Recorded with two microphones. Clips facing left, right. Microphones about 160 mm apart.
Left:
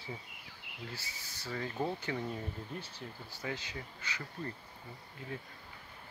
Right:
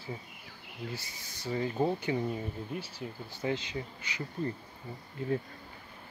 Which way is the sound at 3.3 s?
20° right (ahead or behind).